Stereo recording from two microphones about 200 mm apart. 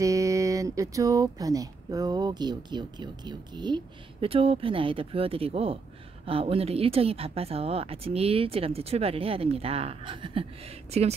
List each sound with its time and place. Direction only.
0.0 s speech: 15° right (ahead or behind); by 11.1 s 30° right (ahead or behind)